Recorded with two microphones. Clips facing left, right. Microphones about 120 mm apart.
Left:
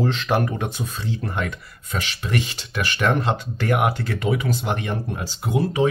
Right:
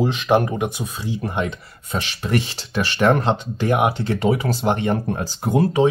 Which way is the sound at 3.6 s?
20° right (ahead or behind).